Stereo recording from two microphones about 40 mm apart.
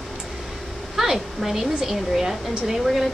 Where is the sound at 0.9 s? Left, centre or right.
Centre.